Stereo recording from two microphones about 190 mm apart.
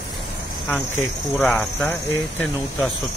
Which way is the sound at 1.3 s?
10° left (ahead or behind).